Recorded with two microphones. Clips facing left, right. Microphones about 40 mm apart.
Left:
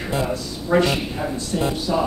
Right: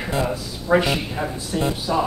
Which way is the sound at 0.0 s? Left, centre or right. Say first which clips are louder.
Even; centre.